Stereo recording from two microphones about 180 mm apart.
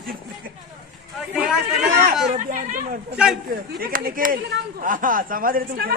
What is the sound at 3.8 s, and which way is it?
Speech, 55° right (ahead or behind).